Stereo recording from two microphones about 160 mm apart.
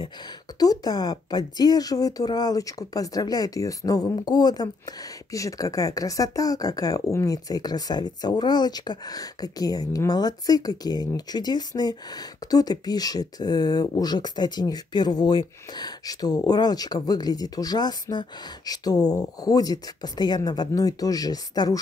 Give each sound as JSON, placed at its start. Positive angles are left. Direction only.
{"t": 0.6, "sound": "speech", "side_deg": 25}